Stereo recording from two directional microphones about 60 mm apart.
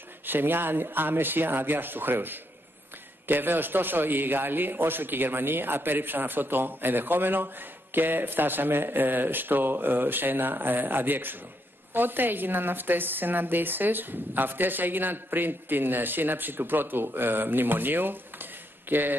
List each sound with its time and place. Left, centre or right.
0.3 s a man's voice: right